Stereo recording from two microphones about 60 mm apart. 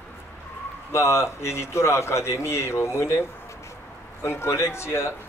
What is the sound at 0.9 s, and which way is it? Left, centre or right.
A man's voice, left.